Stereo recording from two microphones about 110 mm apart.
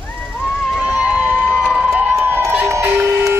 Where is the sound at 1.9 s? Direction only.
15° right (ahead or behind).